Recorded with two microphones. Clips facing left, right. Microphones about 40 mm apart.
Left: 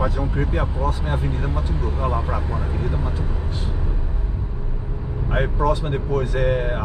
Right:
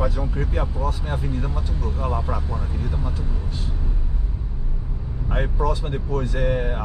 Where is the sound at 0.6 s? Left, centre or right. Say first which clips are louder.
Left 3 dB; left.